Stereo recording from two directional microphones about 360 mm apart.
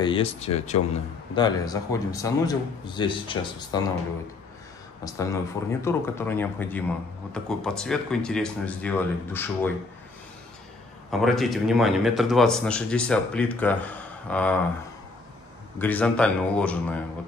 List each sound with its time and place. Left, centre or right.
0.0 s a man's voice: centre
5.0 s a man's voice: centre
11.1 s speech: centre
15.8 s speech: centre